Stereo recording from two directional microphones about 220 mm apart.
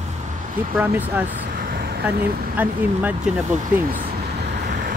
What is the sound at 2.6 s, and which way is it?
Speech, 5° right (ahead or behind).